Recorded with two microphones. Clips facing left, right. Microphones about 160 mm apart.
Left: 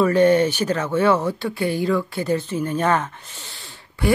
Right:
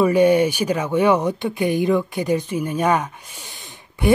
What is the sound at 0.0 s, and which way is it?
Speech, 10° right (ahead or behind).